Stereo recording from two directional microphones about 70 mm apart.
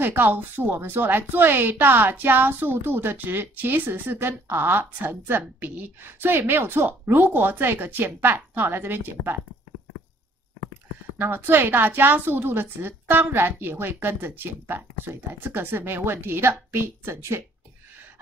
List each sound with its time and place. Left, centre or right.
0.0 s a woman's voice: right
11.1 s a woman's voice: right